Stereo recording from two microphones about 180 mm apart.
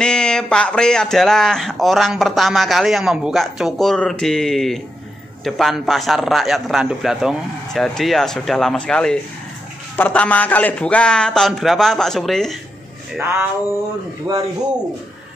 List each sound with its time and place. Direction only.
0.0 s speech: 5° left (ahead or behind)
13.1 s a sound: 10° right (ahead or behind)
14.3 s speech: 20° right (ahead or behind)